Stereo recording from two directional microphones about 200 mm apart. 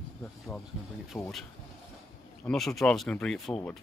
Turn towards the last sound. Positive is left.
turn(degrees=5)  # may be behind; listen again after turning